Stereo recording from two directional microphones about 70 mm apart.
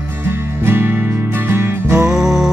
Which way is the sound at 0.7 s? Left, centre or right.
Right.